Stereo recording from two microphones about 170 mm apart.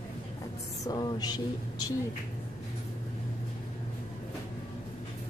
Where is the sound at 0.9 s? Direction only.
25° left (ahead or behind).